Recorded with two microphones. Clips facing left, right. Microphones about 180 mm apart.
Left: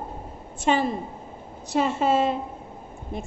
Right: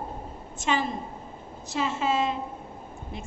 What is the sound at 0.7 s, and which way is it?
A woman's voice, 55° left (ahead or behind).